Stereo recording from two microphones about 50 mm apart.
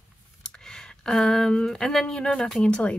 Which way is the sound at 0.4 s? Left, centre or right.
Centre.